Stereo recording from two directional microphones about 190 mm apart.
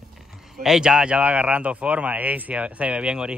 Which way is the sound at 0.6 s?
5° right (ahead or behind).